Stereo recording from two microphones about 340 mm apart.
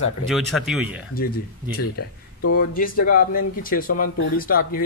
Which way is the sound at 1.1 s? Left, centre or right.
Left.